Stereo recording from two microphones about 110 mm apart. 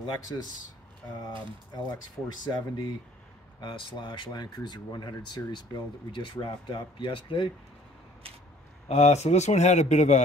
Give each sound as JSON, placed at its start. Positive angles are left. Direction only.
{"t": 0.0, "sound": "speech", "side_deg": 40}
{"t": 2.5, "sound": "speech", "side_deg": 40}
{"t": 8.8, "sound": "a man's voice", "side_deg": 85}